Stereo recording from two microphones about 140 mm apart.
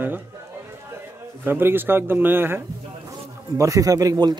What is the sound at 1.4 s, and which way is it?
Speech, 15° right (ahead or behind).